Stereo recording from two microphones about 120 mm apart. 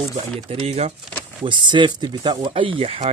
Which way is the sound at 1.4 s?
40° right (ahead or behind).